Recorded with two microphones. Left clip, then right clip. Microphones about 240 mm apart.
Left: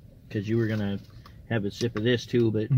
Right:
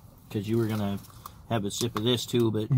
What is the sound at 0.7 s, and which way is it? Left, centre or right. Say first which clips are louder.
Speech: left 1 dB; right.